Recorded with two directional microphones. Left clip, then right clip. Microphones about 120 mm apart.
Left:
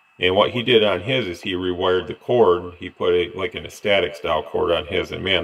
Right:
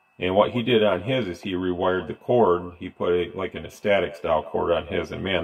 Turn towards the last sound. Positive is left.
turn(degrees=15)  # may be behind; listen again after turning